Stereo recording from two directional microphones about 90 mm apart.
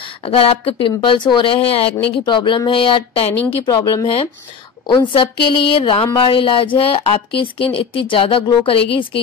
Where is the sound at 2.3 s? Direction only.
60° left (ahead or behind); by 3.3 s 80° left.